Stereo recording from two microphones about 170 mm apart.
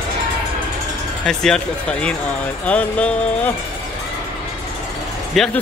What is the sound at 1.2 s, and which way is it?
Speech, 5° left (ahead or behind).